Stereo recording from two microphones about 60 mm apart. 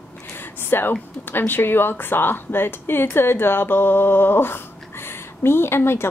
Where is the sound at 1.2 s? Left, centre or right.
Left.